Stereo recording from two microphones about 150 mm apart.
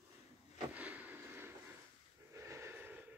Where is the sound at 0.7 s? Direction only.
10° right (ahead or behind).